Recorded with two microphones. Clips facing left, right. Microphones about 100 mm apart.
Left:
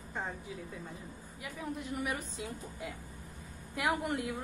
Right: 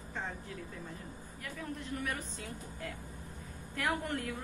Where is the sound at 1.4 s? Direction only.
15° left (ahead or behind).